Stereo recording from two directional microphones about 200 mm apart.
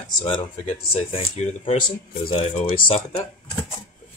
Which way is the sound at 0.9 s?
30° left (ahead or behind).